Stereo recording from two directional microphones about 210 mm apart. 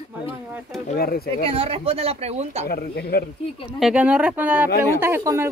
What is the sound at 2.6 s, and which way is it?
Speech, 45° left (ahead or behind).